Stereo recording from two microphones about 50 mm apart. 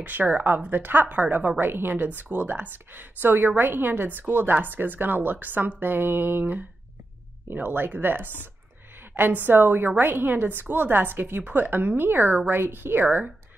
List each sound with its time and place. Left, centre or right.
0.0 s a woman's voice: right
1.6 s a woman's voice: right